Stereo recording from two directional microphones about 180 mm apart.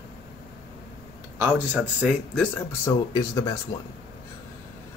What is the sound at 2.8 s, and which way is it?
Speech, 20° left (ahead or behind).